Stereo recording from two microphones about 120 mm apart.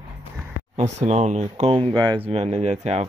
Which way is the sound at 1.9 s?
35° right (ahead or behind).